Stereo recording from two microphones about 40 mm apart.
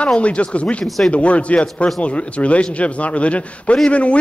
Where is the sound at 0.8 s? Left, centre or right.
Centre.